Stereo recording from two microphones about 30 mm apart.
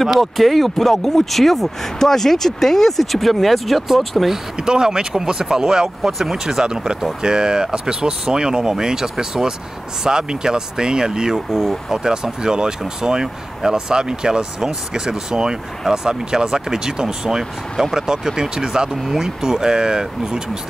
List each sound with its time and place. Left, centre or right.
0.0 s speech: centre
4.6 s speech: right